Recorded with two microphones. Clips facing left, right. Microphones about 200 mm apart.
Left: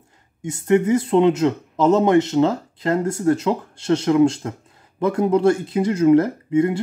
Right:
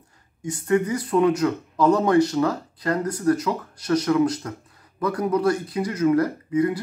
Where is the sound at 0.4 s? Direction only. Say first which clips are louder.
Left 4 dB; 25° left (ahead or behind).